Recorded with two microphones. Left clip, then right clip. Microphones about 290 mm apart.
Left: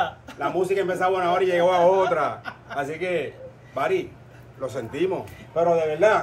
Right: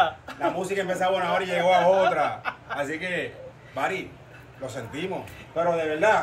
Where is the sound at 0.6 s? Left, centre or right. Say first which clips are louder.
Left 4 dB; centre.